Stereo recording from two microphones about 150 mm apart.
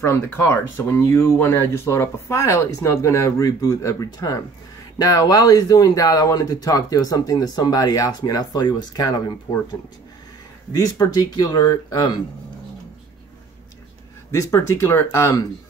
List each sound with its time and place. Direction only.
0.0 s speech: 15° left (ahead or behind)
11.0 s speech: 25° left (ahead or behind)
14.3 s speech: 20° left (ahead or behind)